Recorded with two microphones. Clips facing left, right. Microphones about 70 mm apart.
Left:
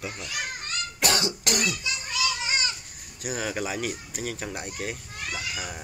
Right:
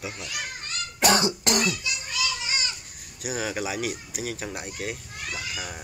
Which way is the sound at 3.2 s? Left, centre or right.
Centre.